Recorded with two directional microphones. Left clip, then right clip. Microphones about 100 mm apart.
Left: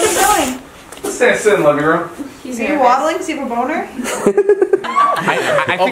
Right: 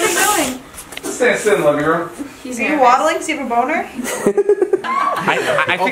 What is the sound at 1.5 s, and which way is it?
Speech, 55° left (ahead or behind).